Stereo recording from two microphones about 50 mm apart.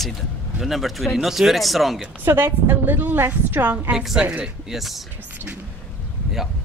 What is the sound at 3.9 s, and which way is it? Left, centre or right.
Speech, centre.